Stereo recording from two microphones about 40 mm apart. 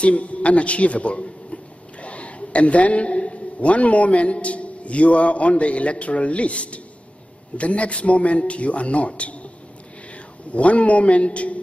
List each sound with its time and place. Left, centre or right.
0.0 s a man's voice: left
10.5 s a man's voice: left